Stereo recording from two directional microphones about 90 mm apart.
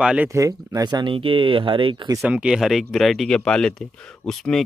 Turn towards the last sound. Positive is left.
turn(degrees=5)  # may be behind; listen again after turning